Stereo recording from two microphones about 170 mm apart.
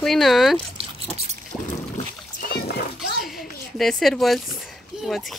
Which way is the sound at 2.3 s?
60° left (ahead or behind).